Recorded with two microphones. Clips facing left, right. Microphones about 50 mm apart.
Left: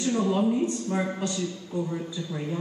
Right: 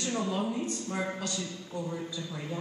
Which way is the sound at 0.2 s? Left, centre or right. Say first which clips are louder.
Left 9 dB; left.